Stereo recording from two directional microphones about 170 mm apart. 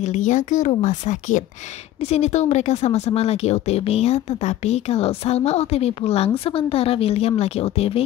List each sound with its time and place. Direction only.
0.0 s speech: 45° left (ahead or behind)